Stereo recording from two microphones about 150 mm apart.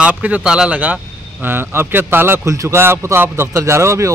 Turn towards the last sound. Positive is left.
turn(degrees=-20)  # may be behind; listen again after turning